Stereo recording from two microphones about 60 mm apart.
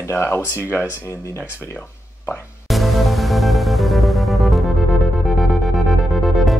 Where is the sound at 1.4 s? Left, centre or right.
Left.